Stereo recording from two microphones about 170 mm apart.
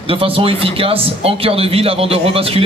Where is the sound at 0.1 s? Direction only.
35° right (ahead or behind).